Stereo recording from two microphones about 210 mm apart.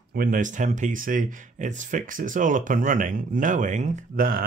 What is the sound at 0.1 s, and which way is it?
Speech, 40° right (ahead or behind).